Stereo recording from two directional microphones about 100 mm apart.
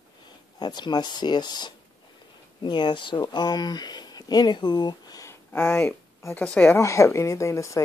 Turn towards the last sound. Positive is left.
turn(degrees=30)  # may be behind; listen again after turning